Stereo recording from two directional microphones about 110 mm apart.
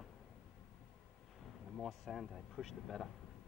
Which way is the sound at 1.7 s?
Centre (ahead or behind).